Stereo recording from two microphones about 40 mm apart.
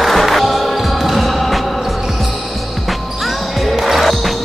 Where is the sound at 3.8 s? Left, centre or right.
Centre.